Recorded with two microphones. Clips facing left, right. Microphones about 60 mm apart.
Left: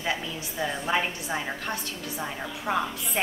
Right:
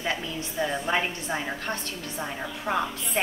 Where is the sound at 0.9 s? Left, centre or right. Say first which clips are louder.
Even; centre.